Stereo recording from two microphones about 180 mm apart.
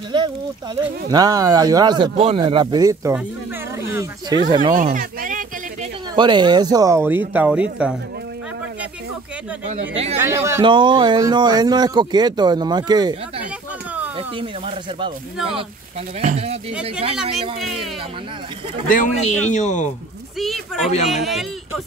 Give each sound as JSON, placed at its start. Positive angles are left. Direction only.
{"t": 0.1, "sound": "speech", "side_deg": -25}
{"t": 4.7, "sound": "speech", "side_deg": -50}
{"t": 6.1, "sound": "speech", "side_deg": -25}
{"t": 9.7, "sound": "speech", "side_deg": -35}
{"t": 10.1, "sound": "speech", "side_deg": -15}
{"t": 10.6, "sound": "speech", "side_deg": -25}
{"t": 14.1, "sound": "speech", "side_deg": -30}
{"t": 16.2, "sound": "speech", "side_deg": -35}
{"t": 18.9, "sound": "a man's voice", "side_deg": 45}
{"t": 20.3, "sound": "speech", "side_deg": 0}